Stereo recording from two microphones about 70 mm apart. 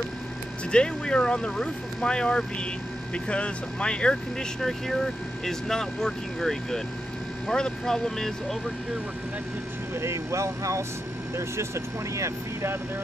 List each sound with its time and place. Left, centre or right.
0.7 s speech: centre
9.9 s speech: right